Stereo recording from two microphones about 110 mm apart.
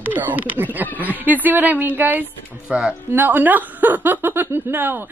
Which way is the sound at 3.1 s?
20° right (ahead or behind).